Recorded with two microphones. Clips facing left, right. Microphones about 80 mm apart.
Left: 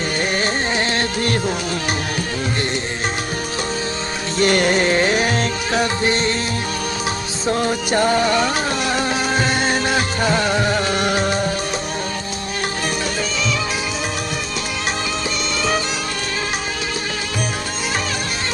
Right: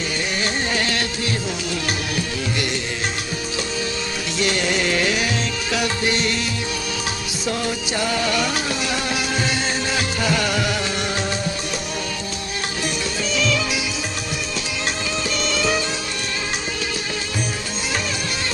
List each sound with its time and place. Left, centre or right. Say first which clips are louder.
0.4 s music: left 3 dB; left
4.4 s music: left 6 dB; left
7.4 s music: left 5 dB; left
10.2 s music: left 3 dB; left